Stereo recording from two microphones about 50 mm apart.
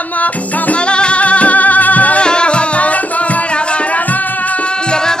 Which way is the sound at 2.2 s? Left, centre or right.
Centre.